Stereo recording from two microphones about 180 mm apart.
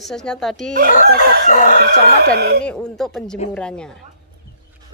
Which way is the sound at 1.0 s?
55° right (ahead or behind).